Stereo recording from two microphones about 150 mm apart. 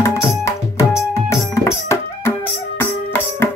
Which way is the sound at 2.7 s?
15° left (ahead or behind).